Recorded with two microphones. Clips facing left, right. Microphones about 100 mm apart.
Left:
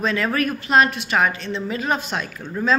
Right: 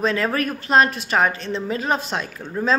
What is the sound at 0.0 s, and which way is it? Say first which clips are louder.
A woman's voice: even; 35° right (ahead or behind).